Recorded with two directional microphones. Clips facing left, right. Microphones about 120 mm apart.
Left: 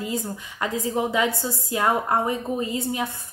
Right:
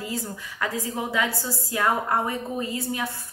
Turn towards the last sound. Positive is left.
turn(degrees=20)  # may be behind; listen again after turning